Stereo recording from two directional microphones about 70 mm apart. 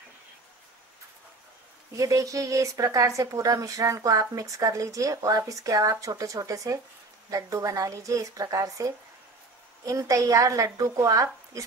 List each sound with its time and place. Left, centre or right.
2.0 s a woman's voice: right